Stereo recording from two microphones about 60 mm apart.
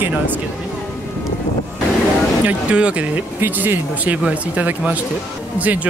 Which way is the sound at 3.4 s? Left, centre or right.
Right.